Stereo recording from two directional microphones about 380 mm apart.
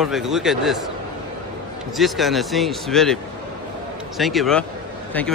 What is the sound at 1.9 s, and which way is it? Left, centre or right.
Speech, centre.